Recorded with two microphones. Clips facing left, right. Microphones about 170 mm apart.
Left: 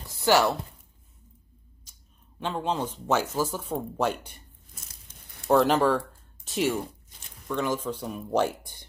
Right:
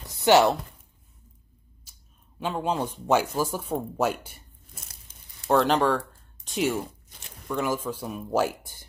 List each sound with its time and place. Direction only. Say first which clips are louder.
0.1 s speech: right 3 dB; 20° right (ahead or behind)
2.4 s speech: right 1 dB; 10° right (ahead or behind)
5.5 s speech: left 1 dB; 5° left (ahead or behind)